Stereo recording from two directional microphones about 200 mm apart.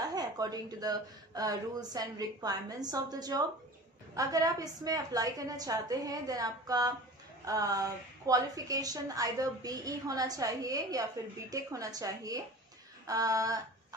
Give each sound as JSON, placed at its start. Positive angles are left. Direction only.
{"t": 0.0, "sound": "a woman's voice", "side_deg": -20}